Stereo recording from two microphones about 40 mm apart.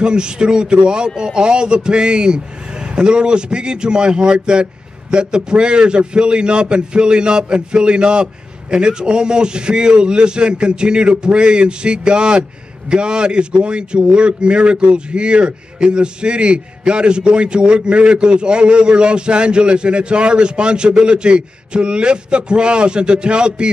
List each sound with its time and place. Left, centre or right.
0.0 s a man's voice: right